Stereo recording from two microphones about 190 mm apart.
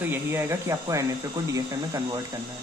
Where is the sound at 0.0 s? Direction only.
10° right (ahead or behind).